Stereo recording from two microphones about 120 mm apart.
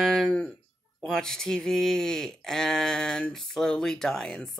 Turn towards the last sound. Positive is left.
turn(degrees=5)  # may be behind; listen again after turning